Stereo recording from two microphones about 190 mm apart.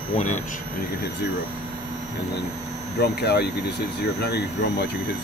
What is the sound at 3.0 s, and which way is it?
Speech, 60° left (ahead or behind).